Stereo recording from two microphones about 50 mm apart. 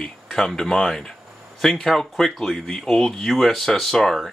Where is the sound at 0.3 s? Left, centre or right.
Centre.